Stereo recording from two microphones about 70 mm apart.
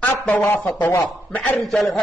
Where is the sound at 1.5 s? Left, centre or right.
Centre.